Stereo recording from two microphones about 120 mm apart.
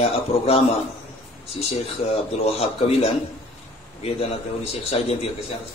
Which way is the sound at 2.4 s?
55° left (ahead or behind).